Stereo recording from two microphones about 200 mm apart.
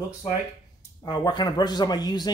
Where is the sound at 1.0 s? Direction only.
20° left (ahead or behind).